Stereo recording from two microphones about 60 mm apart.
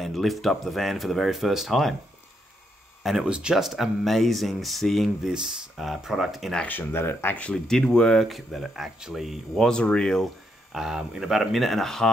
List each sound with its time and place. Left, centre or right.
0.0 s speech: centre
3.0 s speech: centre
3.3 s speech: centre
3.5 s speech: centre
5.3 s speech: centre
6.9 s speech: left
7.3 s speech: left
8.3 s speech: centre
9.7 s speech: centre
10.7 s speech: centre